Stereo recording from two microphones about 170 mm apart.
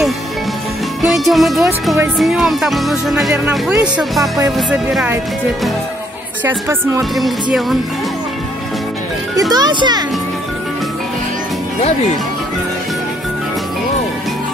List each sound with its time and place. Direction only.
1.0 s speech: centre (ahead or behind)
6.4 s speech: 15° right (ahead or behind)
9.4 s a child's voice: 25° right (ahead or behind)